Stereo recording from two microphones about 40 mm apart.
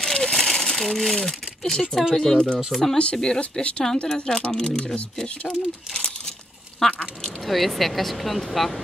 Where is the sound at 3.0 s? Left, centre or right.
Left; by 8.7 s centre.